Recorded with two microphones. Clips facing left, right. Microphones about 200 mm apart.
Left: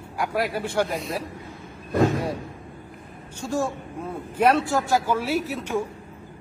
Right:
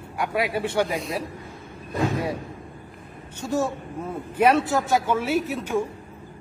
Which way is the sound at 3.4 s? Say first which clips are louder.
Right 1 dB; centre (ahead or behind).